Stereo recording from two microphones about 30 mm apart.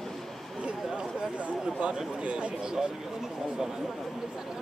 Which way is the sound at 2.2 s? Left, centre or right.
Right.